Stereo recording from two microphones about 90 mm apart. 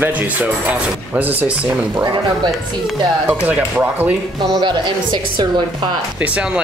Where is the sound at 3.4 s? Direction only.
15° right (ahead or behind).